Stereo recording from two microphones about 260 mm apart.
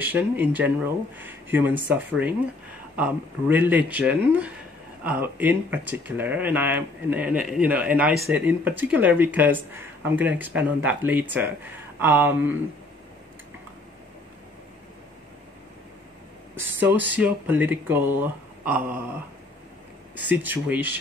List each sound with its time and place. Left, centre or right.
0.0 s speech: centre
16.5 s speech: centre
20.4 s speech: centre